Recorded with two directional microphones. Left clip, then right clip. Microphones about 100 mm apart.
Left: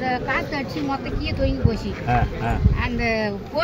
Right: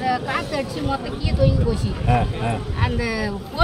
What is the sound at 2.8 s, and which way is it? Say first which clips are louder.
Speech: left 2 dB; 25° right (ahead or behind).